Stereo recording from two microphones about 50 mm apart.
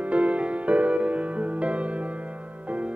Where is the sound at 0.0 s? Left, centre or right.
Right.